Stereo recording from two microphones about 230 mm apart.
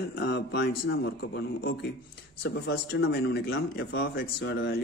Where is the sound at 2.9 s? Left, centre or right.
Left.